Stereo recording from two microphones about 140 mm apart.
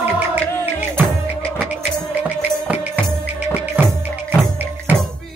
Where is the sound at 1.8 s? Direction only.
10° right (ahead or behind).